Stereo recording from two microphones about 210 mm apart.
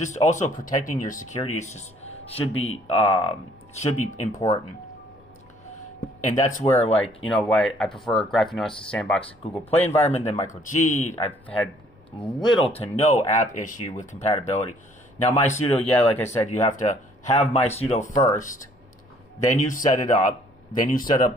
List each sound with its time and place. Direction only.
0.0 s speech: 35° left (ahead or behind)
6.6 s speech: 30° left (ahead or behind)
7.2 s speech: 5° left (ahead or behind)
10.0 s speech: 30° left (ahead or behind)
12.2 s speech: 25° left (ahead or behind)
15.9 s speech: 10° left (ahead or behind)
16.5 s speech: 35° left (ahead or behind)
18.1 s speech: 15° left (ahead or behind)
19.5 s speech: 40° left (ahead or behind)